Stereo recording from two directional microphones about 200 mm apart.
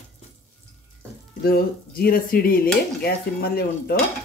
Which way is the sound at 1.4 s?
50° left (ahead or behind).